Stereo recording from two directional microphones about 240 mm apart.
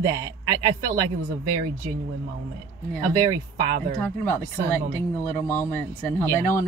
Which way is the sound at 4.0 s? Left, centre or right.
Centre.